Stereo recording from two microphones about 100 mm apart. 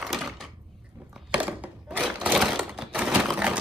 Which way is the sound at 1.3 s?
15° right (ahead or behind).